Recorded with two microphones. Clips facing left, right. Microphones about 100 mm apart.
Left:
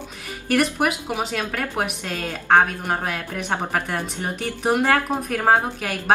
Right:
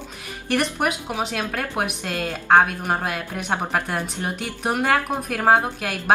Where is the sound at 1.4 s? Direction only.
15° right (ahead or behind).